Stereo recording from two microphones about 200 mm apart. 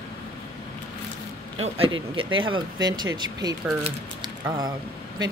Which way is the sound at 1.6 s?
25° right (ahead or behind).